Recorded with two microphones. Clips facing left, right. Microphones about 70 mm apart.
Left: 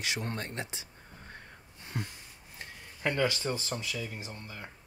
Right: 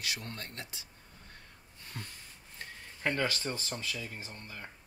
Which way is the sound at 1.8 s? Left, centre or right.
Centre.